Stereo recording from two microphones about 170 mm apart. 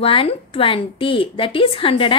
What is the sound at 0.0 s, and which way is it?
A woman's voice, 35° left (ahead or behind).